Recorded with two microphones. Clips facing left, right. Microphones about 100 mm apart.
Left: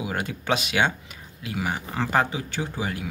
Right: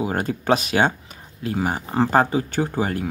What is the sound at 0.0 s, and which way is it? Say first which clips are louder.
Speech: right 6 dB; 40° right (ahead or behind).